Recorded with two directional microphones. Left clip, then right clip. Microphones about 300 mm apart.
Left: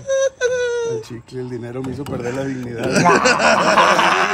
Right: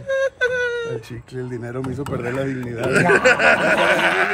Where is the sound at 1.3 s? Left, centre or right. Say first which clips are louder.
Left 1 dB; centre.